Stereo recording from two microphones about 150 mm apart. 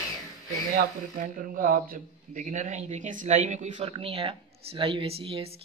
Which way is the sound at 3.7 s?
35° right (ahead or behind).